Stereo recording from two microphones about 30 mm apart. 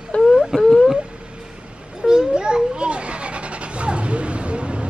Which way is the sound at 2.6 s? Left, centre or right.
Right.